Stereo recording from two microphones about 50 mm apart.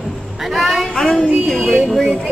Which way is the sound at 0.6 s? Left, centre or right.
Centre.